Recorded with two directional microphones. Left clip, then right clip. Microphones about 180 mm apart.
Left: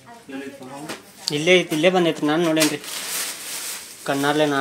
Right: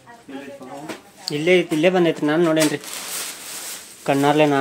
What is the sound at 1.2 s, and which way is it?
Speech, 10° right (ahead or behind).